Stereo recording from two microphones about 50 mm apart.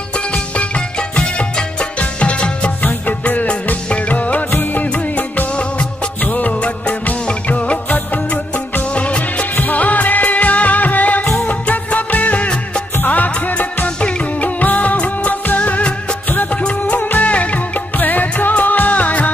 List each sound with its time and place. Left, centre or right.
0.3 s music: left
2.8 s music of bollywood: left
5.6 s music of bollywood: left
9.6 s music: left
11.4 s music of bollywood: left
13.0 s music: left
13.8 s music of bollywood: left
17.1 s music: left